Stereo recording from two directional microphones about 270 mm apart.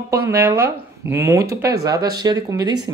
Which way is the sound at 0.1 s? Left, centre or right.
Centre.